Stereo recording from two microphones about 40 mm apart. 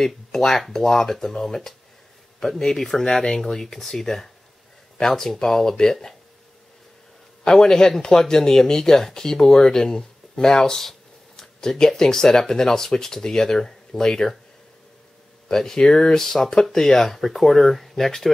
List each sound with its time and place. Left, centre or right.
0.0 s speech: centre
7.4 s speech: centre
15.4 s speech: centre